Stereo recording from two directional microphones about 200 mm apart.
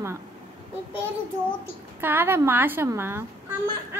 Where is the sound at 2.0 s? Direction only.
10° right (ahead or behind).